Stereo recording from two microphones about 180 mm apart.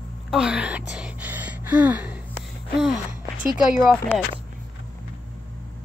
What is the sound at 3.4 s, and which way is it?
Speech, centre (ahead or behind).